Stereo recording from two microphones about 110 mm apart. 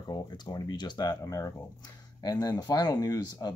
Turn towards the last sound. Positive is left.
turn(degrees=35)  # may be behind; listen again after turning